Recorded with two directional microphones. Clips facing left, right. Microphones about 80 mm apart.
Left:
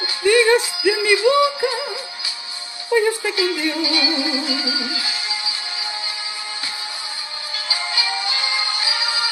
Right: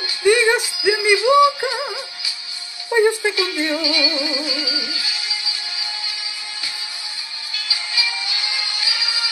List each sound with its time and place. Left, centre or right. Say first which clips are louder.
0.2 s music: left 1 dB; centre
2.9 s music: right 2 dB; centre
3.8 s music: left 1 dB; left
7.6 s music: left 2 dB; left